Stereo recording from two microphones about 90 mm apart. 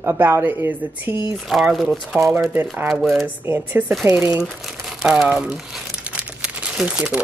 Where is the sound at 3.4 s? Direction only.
20° right (ahead or behind).